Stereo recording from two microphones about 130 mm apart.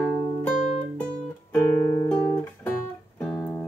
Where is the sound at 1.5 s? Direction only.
20° left (ahead or behind).